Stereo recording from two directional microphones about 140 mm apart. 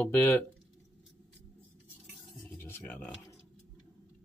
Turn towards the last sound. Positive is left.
turn(degrees=10)  # may be behind; listen again after turning